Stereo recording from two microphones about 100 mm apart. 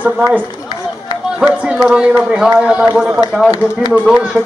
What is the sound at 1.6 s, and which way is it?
Speech, 10° right (ahead or behind).